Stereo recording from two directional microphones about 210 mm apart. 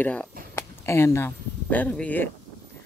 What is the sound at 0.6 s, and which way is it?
Speech, 10° left (ahead or behind).